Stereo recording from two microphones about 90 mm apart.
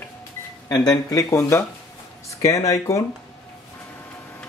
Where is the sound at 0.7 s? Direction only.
45° left (ahead or behind).